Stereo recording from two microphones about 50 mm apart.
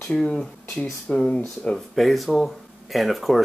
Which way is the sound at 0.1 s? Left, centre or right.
Centre.